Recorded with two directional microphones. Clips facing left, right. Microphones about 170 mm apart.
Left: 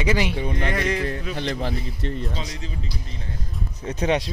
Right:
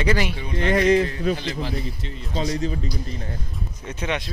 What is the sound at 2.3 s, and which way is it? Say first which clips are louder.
Speech: right 8 dB; 40° right (ahead or behind).